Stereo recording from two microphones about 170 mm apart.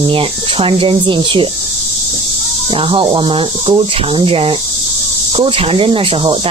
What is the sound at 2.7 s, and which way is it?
Speech, 30° right (ahead or behind).